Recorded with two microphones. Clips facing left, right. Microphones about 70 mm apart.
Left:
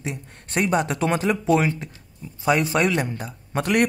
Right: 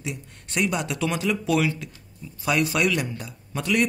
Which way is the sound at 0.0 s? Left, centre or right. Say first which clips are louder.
Left 2 dB; left.